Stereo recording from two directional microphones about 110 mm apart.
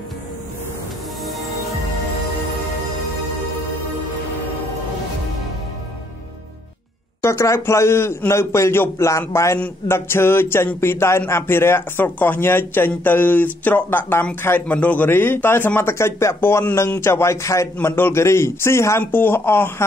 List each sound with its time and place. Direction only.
7.2 s a man's voice: 25° left (ahead or behind)